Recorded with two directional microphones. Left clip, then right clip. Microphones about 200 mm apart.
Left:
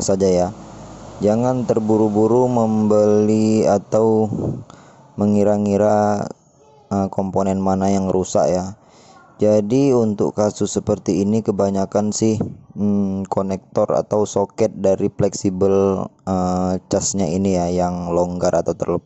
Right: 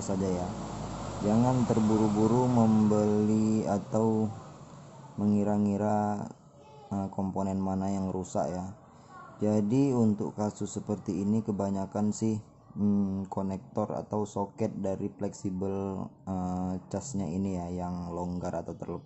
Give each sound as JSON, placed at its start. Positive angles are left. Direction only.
{"t": 0.0, "sound": "speech", "side_deg": 45}
{"t": 2.3, "sound": "speech", "side_deg": 40}